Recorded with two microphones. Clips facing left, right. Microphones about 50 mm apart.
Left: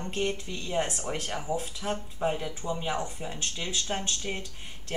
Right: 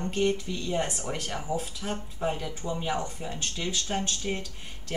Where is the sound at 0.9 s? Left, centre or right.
Centre.